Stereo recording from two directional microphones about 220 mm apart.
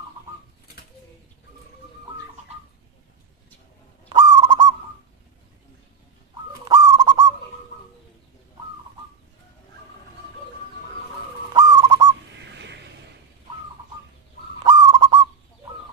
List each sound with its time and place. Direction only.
4.1 s owl: 20° right (ahead or behind)
6.6 s bird: 20° right (ahead or behind)
11.5 s bird: 15° right (ahead or behind)
12.4 s a sound: 55° right (ahead or behind)
14.6 s owl: 20° right (ahead or behind)